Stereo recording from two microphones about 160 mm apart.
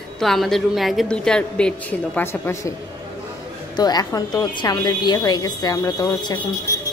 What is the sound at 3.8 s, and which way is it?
A woman's voice, 25° left (ahead or behind).